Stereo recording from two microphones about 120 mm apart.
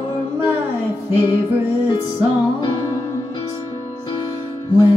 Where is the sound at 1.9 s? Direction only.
35° left (ahead or behind).